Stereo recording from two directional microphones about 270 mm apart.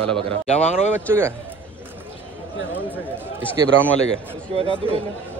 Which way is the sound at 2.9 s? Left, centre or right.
Centre.